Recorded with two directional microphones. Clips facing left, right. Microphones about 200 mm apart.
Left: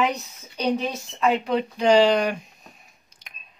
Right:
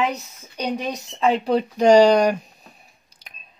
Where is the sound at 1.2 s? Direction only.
35° right (ahead or behind).